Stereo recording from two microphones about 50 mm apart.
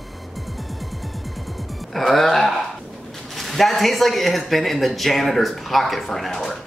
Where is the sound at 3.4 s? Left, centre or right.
Centre.